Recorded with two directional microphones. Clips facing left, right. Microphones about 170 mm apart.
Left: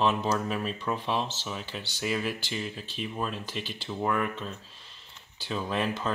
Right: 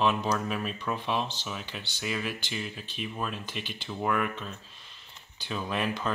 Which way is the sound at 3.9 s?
Centre (ahead or behind).